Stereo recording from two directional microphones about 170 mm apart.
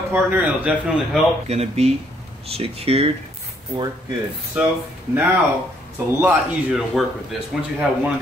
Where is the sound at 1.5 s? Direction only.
40° right (ahead or behind).